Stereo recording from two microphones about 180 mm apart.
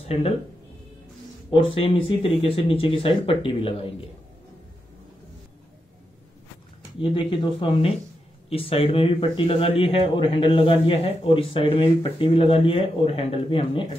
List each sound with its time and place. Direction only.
1.5 s speech: 30° left (ahead or behind)
7.0 s speech: 25° left (ahead or behind)